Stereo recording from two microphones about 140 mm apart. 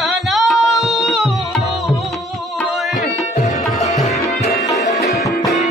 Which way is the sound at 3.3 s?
55° left (ahead or behind).